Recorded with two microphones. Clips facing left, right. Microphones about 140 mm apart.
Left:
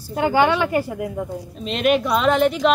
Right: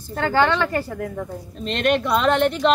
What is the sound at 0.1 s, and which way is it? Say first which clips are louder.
Speech: left 2 dB; 15° left (ahead or behind).